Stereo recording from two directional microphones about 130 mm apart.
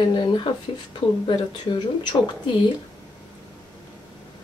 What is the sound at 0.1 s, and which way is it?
Speech, 40° left (ahead or behind).